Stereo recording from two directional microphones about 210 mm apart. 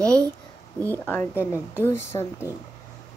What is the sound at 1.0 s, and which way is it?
Speech, 10° left (ahead or behind).